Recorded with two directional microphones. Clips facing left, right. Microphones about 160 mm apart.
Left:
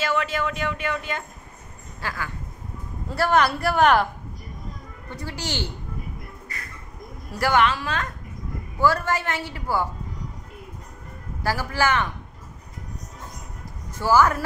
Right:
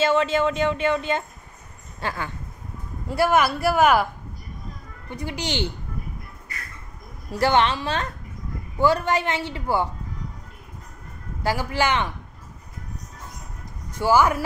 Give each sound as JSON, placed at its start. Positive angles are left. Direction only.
{"t": 0.0, "sound": "speech", "side_deg": -25}
{"t": 3.1, "sound": "speech", "side_deg": -10}
{"t": 5.1, "sound": "speech", "side_deg": -15}
{"t": 7.3, "sound": "speech", "side_deg": -25}
{"t": 11.4, "sound": "speech", "side_deg": -20}
{"t": 13.9, "sound": "speech", "side_deg": -15}